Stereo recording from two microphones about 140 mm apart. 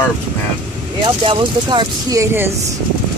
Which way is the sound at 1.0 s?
35° right (ahead or behind).